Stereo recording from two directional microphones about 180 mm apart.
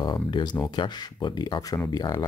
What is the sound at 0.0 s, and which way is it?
Speech, 25° left (ahead or behind).